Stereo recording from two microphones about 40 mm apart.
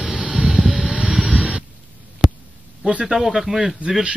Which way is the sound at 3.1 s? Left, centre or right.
Centre.